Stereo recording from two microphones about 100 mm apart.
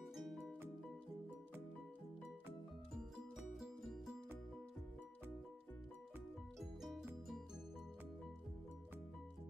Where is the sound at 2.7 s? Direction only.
Centre (ahead or behind).